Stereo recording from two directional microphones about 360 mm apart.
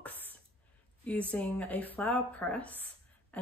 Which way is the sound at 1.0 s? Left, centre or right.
Centre.